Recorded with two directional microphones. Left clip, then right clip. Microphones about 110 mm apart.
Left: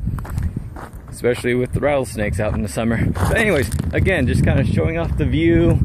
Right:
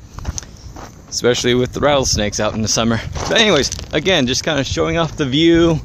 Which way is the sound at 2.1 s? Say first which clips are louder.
Right 5 dB; 35° right (ahead or behind).